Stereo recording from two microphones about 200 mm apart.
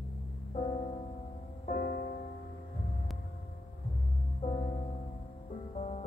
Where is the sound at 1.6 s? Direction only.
40° left (ahead or behind).